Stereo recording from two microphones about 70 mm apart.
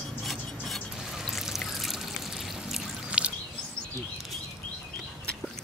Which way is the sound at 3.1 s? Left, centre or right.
Centre.